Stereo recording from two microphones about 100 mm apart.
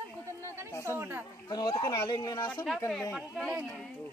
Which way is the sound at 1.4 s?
45° left (ahead or behind).